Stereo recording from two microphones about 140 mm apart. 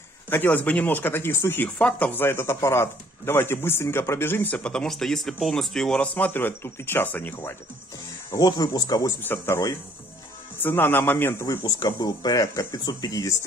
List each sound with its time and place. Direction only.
0.3 s speech: 15° left (ahead or behind)
8.3 s speech: 25° left (ahead or behind)
9.2 s speech: 15° left (ahead or behind)